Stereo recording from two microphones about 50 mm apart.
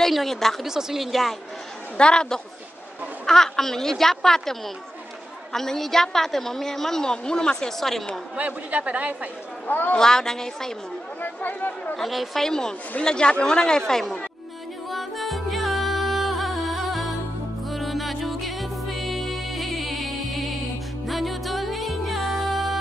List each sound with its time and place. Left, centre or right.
0.0 s a woman's voice: centre
0.7 s a woman's voice: centre
2.0 s a woman's voice: centre
8.4 s speech: right
9.7 s a man's voice: left
9.9 s a woman's voice: centre
11.1 s speech: left
12.0 s a woman's voice: centre
12.4 s a woman's voice: centre
14.9 s music: centre